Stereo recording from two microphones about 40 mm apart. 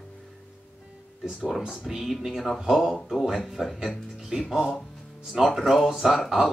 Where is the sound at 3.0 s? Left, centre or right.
Centre.